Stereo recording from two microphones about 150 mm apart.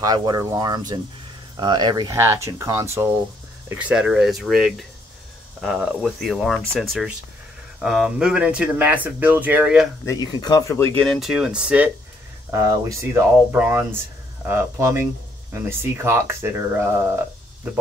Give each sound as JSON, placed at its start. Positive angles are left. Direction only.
{"t": 0.0, "sound": "speech", "side_deg": -25}
{"t": 3.9, "sound": "speech", "side_deg": -5}
{"t": 10.0, "sound": "speech", "side_deg": 25}
{"t": 11.0, "sound": "speech", "side_deg": 0}
{"t": 12.4, "sound": "speech", "side_deg": -20}